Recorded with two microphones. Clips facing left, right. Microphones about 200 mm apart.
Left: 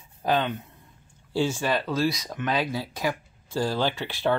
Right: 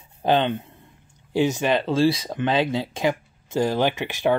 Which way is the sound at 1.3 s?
20° right (ahead or behind).